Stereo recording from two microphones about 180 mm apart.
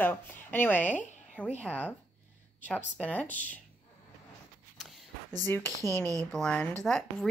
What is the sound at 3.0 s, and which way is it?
Speech, 10° left (ahead or behind).